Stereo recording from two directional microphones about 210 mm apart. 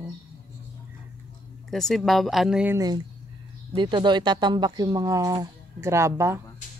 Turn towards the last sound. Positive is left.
turn(degrees=-15)  # may be behind; listen again after turning